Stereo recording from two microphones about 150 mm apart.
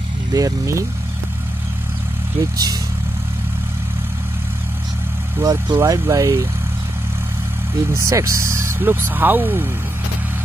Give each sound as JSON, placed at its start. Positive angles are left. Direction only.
{"t": 0.3, "sound": "speech", "side_deg": -20}
{"t": 2.5, "sound": "speech", "side_deg": -25}
{"t": 5.4, "sound": "speech", "side_deg": -20}
{"t": 7.9, "sound": "speech", "side_deg": -20}